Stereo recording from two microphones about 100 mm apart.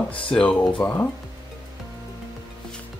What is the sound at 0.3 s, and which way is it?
Speech, 15° left (ahead or behind).